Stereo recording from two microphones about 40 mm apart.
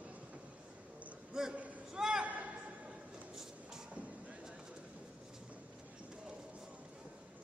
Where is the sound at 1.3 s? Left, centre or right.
Centre.